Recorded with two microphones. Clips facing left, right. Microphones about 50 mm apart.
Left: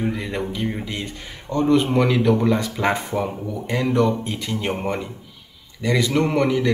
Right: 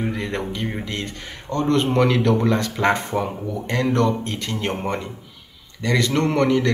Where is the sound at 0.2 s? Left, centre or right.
Centre.